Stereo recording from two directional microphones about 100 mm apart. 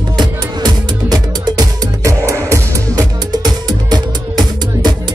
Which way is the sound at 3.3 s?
45° right (ahead or behind).